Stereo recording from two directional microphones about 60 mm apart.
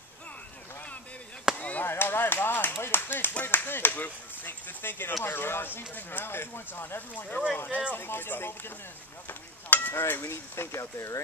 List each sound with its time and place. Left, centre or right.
1.6 s chop: left
1.9 s clapping: left
3.4 s speech: left
7.2 s speech: left
9.3 s stir: left
10.2 s speech: left
10.8 s speech: left